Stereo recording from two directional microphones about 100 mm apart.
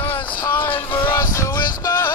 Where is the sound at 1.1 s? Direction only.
30° left (ahead or behind).